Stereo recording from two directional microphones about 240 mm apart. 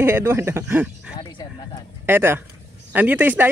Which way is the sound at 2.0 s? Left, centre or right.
Centre.